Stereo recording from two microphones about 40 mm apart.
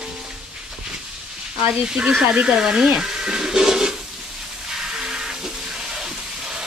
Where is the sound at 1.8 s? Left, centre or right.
Centre.